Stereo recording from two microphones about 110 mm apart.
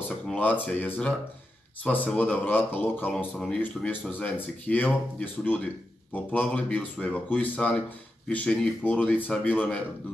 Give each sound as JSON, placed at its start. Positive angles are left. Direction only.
{"t": 0.3, "sound": "speech", "side_deg": 15}